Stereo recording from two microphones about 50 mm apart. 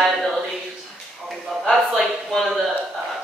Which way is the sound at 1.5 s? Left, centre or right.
Centre.